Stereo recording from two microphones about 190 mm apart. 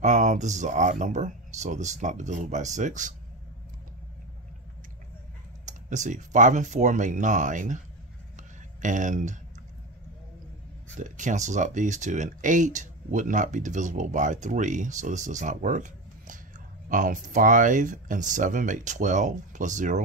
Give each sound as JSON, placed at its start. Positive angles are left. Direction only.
{"t": 0.0, "sound": "speech", "side_deg": -40}
{"t": 5.7, "sound": "speech", "side_deg": -40}
{"t": 8.4, "sound": "a sound", "side_deg": -40}
{"t": 11.0, "sound": "speech", "side_deg": -40}